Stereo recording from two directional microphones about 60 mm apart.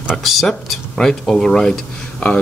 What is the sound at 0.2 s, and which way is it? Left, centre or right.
Speech, centre.